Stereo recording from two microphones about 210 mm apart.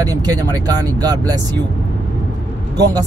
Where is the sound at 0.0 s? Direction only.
15° right (ahead or behind).